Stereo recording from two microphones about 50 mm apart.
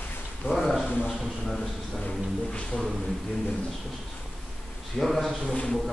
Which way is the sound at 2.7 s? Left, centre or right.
Left.